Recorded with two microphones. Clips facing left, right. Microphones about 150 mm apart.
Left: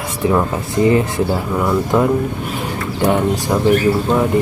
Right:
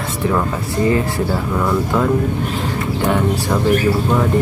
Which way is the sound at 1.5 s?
15° left (ahead or behind).